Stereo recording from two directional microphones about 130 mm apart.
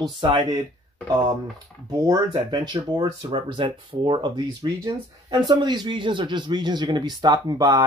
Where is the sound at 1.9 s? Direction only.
25° right (ahead or behind).